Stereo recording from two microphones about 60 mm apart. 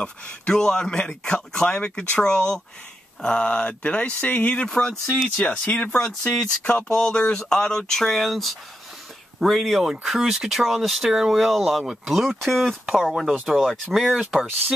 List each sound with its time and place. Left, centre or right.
0.0 s speech: centre
4.6 s speech: centre
5.4 s speech: left; by 14.4 s centre